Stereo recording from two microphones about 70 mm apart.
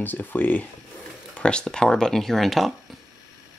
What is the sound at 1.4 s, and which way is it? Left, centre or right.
Speech, centre.